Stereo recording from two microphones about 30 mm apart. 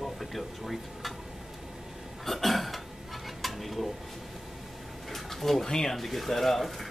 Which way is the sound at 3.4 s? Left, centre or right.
Centre.